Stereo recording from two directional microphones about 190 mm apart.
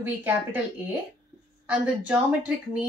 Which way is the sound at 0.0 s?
10° right (ahead or behind).